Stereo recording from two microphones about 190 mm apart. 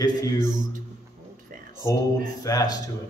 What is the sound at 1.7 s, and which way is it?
A man's voice, 15° left (ahead or behind).